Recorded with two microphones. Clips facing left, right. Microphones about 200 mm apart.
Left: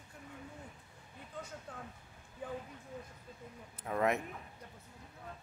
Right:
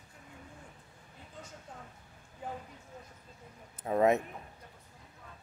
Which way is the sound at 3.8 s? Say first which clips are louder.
Right 6 dB; 20° right (ahead or behind).